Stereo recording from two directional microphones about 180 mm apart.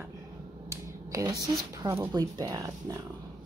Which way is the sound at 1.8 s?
20° right (ahead or behind).